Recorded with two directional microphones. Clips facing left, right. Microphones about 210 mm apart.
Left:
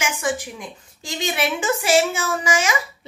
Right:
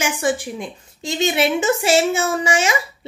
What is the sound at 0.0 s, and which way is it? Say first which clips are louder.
A woman's voice: right 4 dB; 25° right (ahead or behind).